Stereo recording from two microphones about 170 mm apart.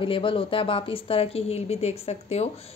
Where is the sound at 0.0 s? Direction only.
30° left (ahead or behind).